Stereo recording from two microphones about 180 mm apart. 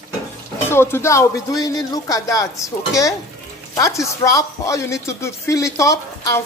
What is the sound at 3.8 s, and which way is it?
Speech, 15° left (ahead or behind).